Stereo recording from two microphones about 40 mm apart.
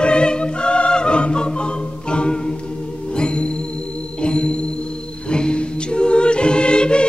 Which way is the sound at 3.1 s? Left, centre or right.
Left.